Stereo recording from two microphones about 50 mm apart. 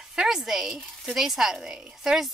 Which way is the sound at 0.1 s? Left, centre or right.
Centre.